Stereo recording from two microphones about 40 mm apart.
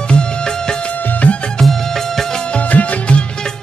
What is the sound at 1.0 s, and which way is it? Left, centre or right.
Music, left.